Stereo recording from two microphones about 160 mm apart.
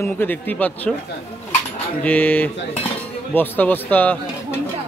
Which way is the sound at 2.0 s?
10° left (ahead or behind).